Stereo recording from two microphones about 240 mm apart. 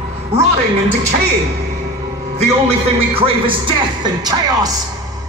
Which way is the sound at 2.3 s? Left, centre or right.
Right.